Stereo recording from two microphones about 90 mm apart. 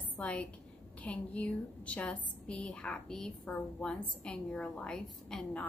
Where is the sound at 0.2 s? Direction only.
15° left (ahead or behind).